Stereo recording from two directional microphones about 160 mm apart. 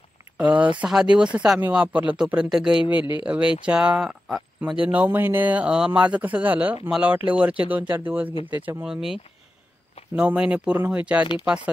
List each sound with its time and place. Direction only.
0.4 s speech: 10° right (ahead or behind)
3.0 s speech: 30° left (ahead or behind)
3.3 s speech: 10° right (ahead or behind)